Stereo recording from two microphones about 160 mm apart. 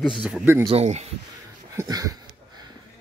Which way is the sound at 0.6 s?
40° right (ahead or behind).